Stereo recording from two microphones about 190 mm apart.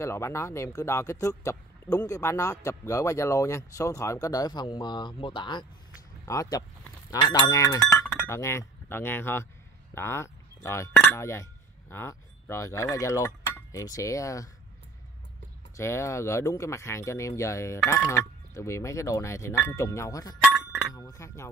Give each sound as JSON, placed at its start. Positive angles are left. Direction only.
{"t": 0.0, "sound": "speech", "side_deg": 15}
{"t": 15.7, "sound": "speech", "side_deg": 15}
{"t": 20.9, "sound": "chink", "side_deg": 15}